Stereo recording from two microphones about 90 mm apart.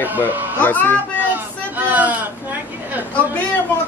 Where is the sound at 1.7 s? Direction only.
15° right (ahead or behind).